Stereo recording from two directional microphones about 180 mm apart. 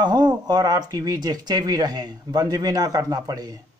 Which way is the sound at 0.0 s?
25° right (ahead or behind).